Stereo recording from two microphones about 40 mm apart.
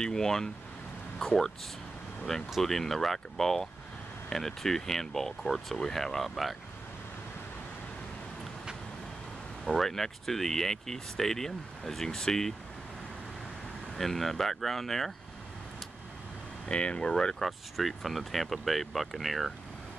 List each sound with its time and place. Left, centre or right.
0.0 s speech: centre
9.7 s speech: centre
13.9 s speech: centre
16.6 s speech: left
17.4 s speech: centre